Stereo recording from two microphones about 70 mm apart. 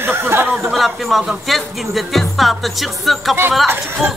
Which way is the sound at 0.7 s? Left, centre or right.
Centre.